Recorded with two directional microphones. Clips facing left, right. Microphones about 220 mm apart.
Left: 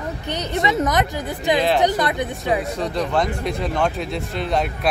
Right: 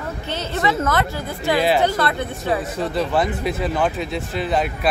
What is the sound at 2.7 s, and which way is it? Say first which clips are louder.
Speech: right 1 dB; 5° right (ahead or behind).